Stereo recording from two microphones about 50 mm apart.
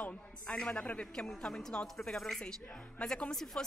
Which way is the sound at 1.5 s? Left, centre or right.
Centre.